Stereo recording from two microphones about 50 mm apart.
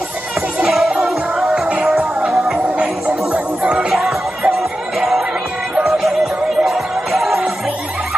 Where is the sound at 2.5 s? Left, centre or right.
Centre.